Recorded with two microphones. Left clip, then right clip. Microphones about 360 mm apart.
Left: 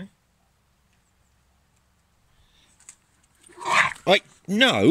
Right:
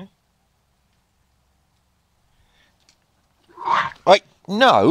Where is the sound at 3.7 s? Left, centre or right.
Centre.